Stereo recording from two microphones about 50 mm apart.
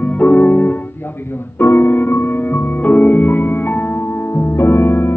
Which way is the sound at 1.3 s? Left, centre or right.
Left.